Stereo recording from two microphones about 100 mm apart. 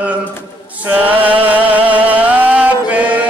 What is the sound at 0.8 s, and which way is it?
Music, 15° right (ahead or behind).